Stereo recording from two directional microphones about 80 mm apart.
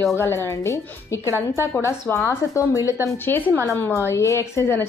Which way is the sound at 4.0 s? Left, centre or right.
Left.